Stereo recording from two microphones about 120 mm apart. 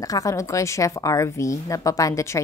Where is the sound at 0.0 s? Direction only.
30° left (ahead or behind).